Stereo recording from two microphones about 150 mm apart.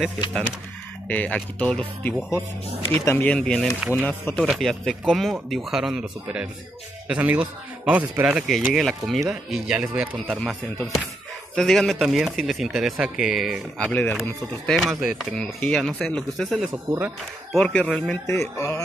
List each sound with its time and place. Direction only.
1.0 s a man's voice: 10° left (ahead or behind)
14.7 s speech: centre (ahead or behind)
16.9 s a man's voice: 20° right (ahead or behind)
17.6 s speech: 5° left (ahead or behind)
18.2 s mantra: 20° left (ahead or behind)